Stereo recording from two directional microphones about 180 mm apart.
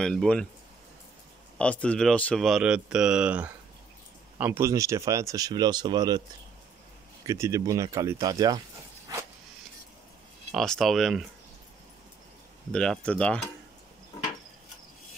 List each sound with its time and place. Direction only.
0.0 s speech: 5° left (ahead or behind)
1.6 s speech: 5° left (ahead or behind); by 6.2 s 25° right (ahead or behind)
7.2 s speech: 15° right (ahead or behind)
10.5 s speech: centre (ahead or behind)
12.7 s speech: 5° left (ahead or behind)